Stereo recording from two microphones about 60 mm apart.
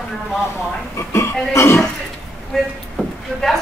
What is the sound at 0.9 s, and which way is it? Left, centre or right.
Speech, left.